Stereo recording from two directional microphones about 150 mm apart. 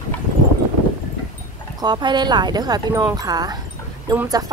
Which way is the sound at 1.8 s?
30° right (ahead or behind).